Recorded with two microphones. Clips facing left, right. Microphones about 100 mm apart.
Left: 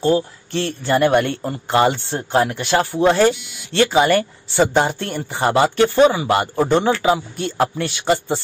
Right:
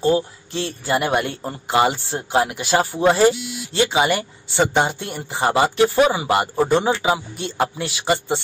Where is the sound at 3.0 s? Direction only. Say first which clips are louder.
Left 1 dB; 10° right (ahead or behind).